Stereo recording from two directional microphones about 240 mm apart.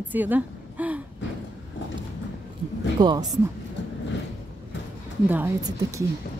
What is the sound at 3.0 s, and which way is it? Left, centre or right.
Speech, centre.